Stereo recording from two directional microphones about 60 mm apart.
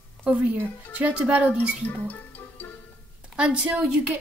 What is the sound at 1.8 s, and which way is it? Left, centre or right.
Music, left.